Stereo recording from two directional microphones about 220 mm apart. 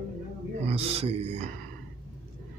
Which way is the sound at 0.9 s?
25° right (ahead or behind).